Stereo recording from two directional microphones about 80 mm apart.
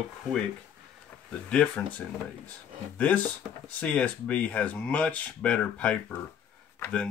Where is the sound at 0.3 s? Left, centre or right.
Centre.